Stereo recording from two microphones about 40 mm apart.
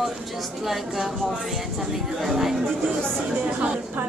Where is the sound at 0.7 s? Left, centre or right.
Centre.